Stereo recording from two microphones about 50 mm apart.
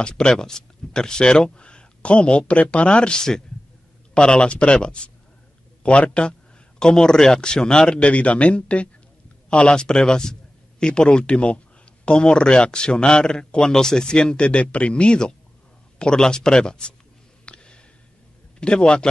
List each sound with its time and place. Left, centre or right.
0.1 s a man's voice: centre
17.5 s a sound: left
18.6 s speech: centre